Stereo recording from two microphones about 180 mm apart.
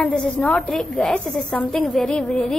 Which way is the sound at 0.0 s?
5° left (ahead or behind).